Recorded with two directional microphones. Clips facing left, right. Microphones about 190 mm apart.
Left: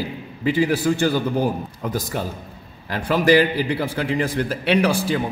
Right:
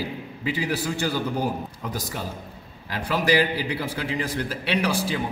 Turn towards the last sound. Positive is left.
turn(degrees=55)  # may be behind; listen again after turning